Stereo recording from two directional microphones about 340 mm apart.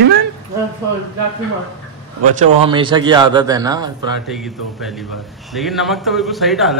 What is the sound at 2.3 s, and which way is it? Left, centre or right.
A man's voice, centre.